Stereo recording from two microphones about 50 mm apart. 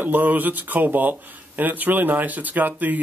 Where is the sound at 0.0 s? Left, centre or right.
Right.